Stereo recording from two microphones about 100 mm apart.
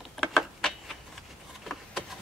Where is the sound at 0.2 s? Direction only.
5° right (ahead or behind).